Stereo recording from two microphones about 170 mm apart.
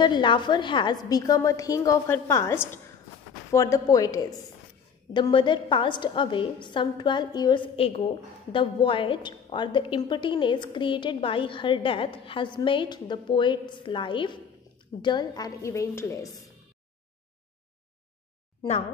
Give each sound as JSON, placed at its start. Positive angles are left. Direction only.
{"t": 0.0, "sound": "a woman's voice", "side_deg": 25}